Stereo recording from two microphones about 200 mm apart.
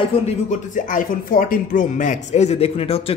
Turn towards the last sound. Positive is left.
turn(degrees=30)  # may be behind; listen again after turning